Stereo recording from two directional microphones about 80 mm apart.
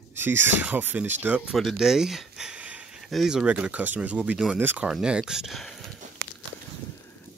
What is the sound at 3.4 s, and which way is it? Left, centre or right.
Speech, centre.